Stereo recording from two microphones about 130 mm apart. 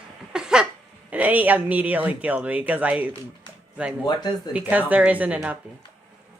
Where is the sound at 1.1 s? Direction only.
10° right (ahead or behind).